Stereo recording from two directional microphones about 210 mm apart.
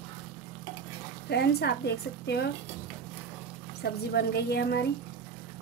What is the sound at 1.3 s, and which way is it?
A woman's voice, 50° left (ahead or behind).